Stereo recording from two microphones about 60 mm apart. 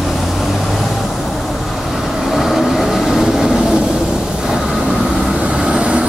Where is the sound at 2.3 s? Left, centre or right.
Centre.